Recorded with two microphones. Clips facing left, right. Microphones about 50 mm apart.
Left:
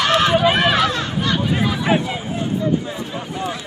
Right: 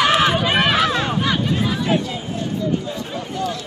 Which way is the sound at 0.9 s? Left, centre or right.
Centre.